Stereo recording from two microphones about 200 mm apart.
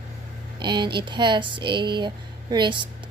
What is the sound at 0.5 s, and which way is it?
Speech, 25° right (ahead or behind).